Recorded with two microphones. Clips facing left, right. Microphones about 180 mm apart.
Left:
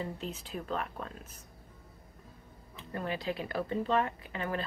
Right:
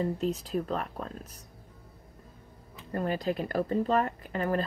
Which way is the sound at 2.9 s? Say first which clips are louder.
Right 5 dB; 40° right (ahead or behind).